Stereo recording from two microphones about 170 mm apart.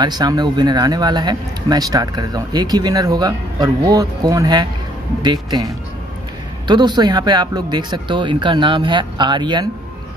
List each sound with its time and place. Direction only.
0.0 s speech: 25° right (ahead or behind)
6.7 s speech: 25° right (ahead or behind)